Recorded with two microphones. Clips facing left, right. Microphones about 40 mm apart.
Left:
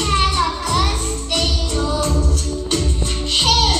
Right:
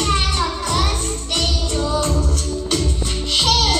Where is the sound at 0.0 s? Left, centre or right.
Centre.